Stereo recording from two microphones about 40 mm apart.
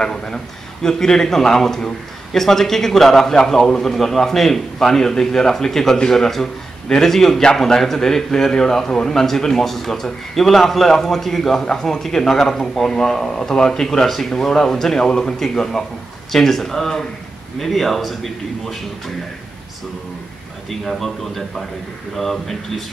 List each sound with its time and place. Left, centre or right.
0.0 s a man's voice: centre
20.8 s speech: centre